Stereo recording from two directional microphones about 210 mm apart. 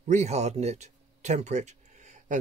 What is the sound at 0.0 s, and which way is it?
Speech, 35° right (ahead or behind).